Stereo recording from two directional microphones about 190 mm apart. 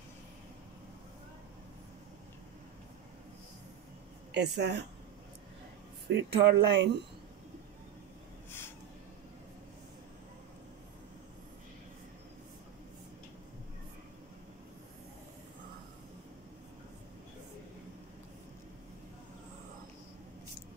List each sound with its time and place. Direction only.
4.3 s speech: 60° right (ahead or behind)
6.0 s speech: 65° right (ahead or behind)